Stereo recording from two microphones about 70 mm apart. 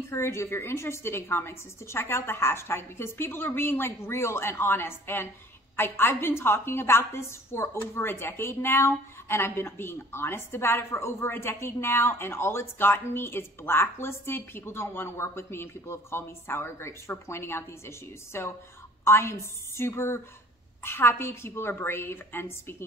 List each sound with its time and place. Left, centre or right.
0.1 s a woman's voice: left